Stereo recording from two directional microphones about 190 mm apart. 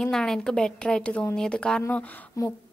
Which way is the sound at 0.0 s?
Centre (ahead or behind).